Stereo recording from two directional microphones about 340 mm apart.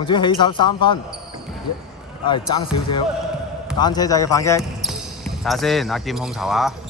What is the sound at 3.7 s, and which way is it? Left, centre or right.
Speech, centre.